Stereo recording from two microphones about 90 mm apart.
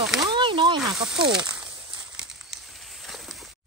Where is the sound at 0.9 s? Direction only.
5° right (ahead or behind).